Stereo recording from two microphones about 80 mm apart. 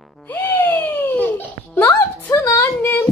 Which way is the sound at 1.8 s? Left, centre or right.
Left.